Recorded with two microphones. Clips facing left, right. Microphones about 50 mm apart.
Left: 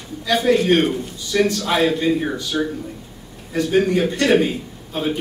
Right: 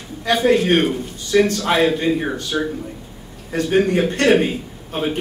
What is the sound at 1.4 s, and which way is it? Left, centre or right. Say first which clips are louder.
Speech: even; right.